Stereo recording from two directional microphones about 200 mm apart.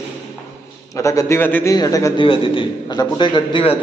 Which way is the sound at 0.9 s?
15° left (ahead or behind).